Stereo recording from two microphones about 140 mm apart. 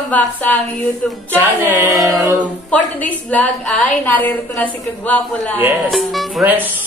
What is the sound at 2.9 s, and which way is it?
A woman's voice, 10° left (ahead or behind).